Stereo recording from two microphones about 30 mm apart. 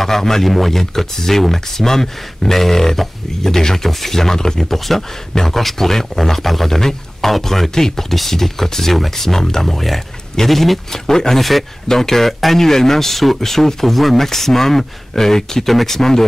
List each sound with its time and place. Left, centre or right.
0.0 s speech: centre
4.7 s a man's voice: centre
11.1 s speech: centre
11.3 s a man's voice: centre